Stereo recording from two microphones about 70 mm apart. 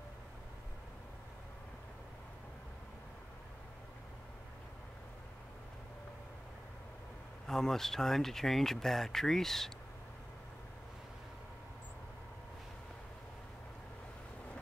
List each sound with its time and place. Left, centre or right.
7.4 s speech: centre